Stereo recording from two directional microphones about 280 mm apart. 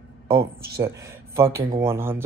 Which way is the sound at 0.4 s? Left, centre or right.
Centre.